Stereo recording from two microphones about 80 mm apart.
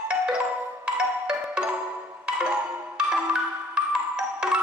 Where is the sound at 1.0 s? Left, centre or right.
Centre.